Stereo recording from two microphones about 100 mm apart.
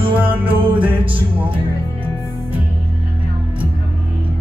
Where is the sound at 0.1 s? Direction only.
15° right (ahead or behind).